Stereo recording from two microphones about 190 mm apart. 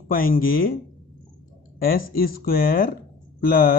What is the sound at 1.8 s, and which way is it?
Speech, 50° left (ahead or behind).